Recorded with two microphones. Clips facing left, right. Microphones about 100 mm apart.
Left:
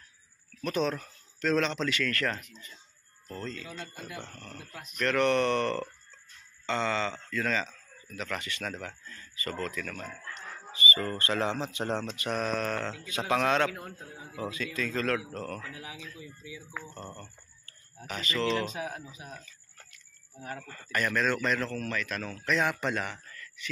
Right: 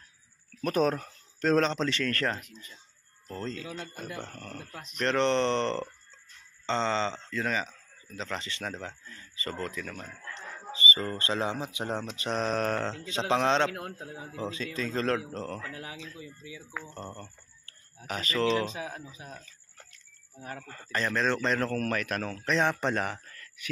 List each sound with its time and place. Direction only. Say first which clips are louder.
0.7 s speech: right 3 dB; 45° right (ahead or behind)
2.3 s speech: right 1 dB; 5° right (ahead or behind)
3.3 s speech: right 2 dB; 35° right (ahead or behind)
3.8 s speech: right 2 dB; 45° right (ahead or behind)
4.9 s speech: even; 30° right (ahead or behind)
13.0 s speech: right 1 dB; 25° right (ahead or behind)
18.0 s speech: right 2 dB; 40° right (ahead or behind)
18.9 s speech: left 1 dB; 20° left (ahead or behind)
19.9 s speech: left 1 dB; 25° right (ahead or behind)
21.5 s speech: right 4 dB; 50° right (ahead or behind)